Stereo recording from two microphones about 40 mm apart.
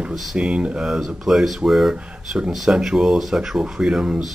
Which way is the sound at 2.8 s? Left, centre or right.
Centre.